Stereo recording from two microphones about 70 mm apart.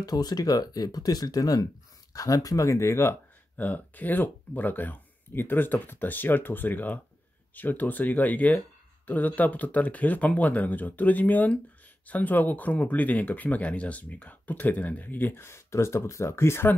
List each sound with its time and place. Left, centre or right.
0.0 s speech: left
3.5 s speech: left